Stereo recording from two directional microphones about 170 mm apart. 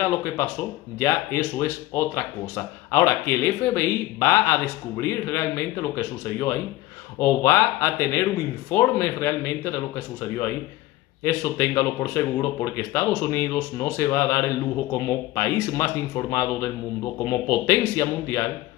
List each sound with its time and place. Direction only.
0.0 s speech: 15° left (ahead or behind)
11.2 s speech: 15° left (ahead or behind)